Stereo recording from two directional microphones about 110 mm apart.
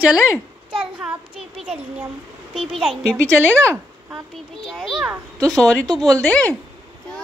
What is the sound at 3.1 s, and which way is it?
A child's voice, 10° left (ahead or behind).